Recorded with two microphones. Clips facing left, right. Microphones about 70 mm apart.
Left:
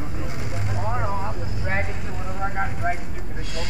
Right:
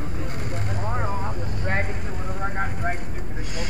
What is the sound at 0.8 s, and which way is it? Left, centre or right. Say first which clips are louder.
Vehicle: left 2 dB; centre.